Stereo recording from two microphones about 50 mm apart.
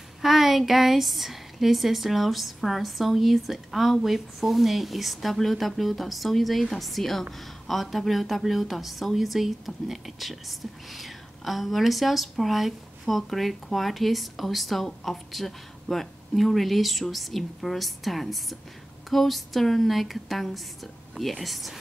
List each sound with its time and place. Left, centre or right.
0.2 s speech: centre